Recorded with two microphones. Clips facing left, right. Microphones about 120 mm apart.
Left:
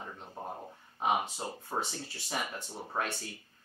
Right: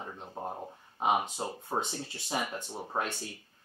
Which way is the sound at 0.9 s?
20° right (ahead or behind).